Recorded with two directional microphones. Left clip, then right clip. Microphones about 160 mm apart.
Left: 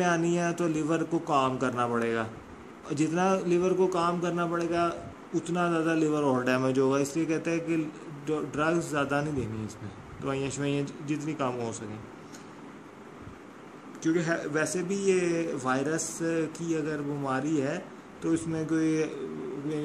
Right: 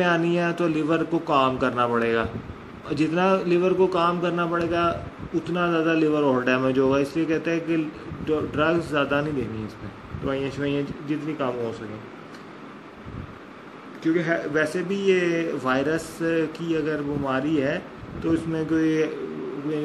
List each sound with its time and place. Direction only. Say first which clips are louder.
0.0 s a man's voice: right 5 dB; 5° left (ahead or behind)
10.2 s a man's voice: right 5 dB; 20° left (ahead or behind)
14.0 s a man's voice: right 5 dB; 15° left (ahead or behind)